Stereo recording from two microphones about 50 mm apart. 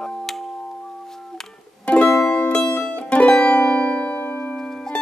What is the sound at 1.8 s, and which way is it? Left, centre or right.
Music, left.